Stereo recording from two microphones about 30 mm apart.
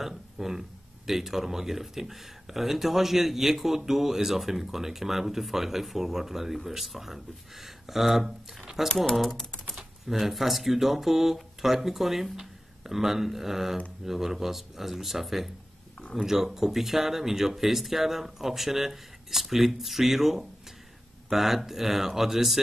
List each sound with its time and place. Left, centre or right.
0.0 s speech: centre
9.3 s typing: centre
9.8 s speech: centre